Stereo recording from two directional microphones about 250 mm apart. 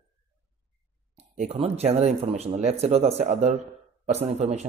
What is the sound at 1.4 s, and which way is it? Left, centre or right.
A man's voice, right.